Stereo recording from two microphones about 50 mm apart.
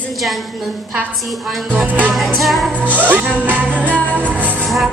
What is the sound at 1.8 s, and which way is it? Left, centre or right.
Speech, right.